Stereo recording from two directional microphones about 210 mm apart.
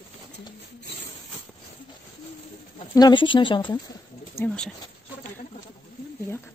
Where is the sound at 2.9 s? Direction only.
20° left (ahead or behind).